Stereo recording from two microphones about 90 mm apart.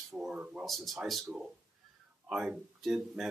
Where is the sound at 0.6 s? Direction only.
Centre (ahead or behind).